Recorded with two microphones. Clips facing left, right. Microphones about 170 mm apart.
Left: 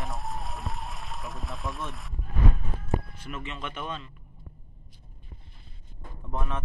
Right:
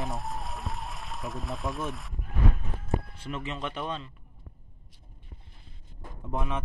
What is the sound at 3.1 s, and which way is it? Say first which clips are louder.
Speech: right 3 dB; 30° right (ahead or behind).